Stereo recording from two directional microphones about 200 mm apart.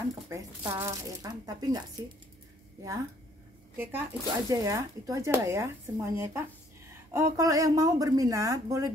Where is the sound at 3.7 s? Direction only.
10° right (ahead or behind).